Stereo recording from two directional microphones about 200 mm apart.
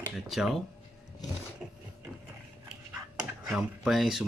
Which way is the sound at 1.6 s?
5° right (ahead or behind).